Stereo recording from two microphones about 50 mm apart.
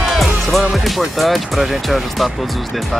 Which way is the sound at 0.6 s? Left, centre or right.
Centre.